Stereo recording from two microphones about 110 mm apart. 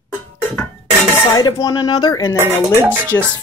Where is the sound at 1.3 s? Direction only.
30° left (ahead or behind).